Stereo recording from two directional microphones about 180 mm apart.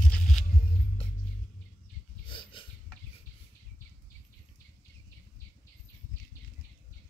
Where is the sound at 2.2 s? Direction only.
25° left (ahead or behind).